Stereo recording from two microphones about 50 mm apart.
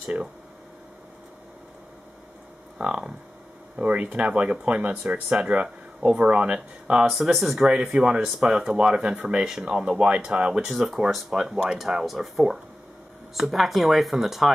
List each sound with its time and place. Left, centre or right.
2.8 s speech: centre
7.1 s speech: centre
11.5 s speech: centre
11.8 s speech: centre